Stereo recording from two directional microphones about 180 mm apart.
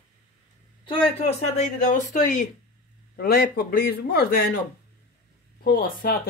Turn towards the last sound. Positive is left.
turn(degrees=55)  # may be behind; listen again after turning